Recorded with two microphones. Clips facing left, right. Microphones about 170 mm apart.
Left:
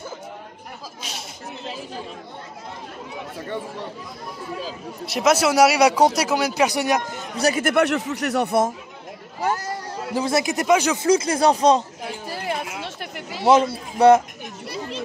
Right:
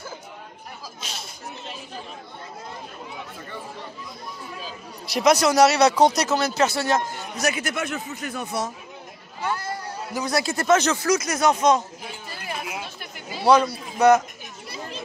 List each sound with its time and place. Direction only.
5.0 s speech: centre (ahead or behind)
7.3 s speech: 35° left (ahead or behind)
7.6 s speech: 70° left (ahead or behind)
9.4 s a sound: 40° left (ahead or behind)
10.1 s speech: 25° left (ahead or behind)
11.0 s speech: 30° left (ahead or behind)
12.3 s a sound: 75° left (ahead or behind)
13.4 s a man's voice: 25° left (ahead or behind)